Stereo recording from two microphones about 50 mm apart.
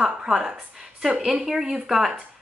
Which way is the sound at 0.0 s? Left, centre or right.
Centre.